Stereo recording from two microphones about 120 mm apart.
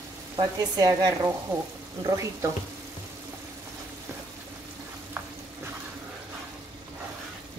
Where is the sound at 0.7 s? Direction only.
30° right (ahead or behind).